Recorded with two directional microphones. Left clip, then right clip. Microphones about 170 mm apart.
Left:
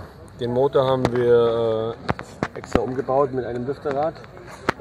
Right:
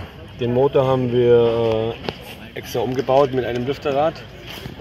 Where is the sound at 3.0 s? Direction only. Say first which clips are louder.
Right 6 dB; 5° right (ahead or behind).